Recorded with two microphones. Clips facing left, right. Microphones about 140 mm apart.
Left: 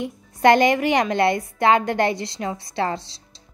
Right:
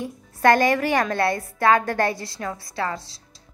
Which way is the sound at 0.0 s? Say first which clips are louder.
Left 2 dB; 20° left (ahead or behind).